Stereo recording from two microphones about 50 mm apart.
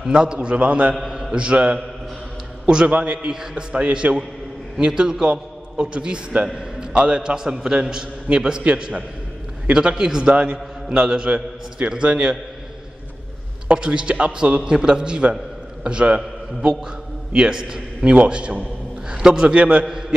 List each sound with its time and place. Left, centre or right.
0.0 s a man's voice: centre
13.7 s a man's voice: centre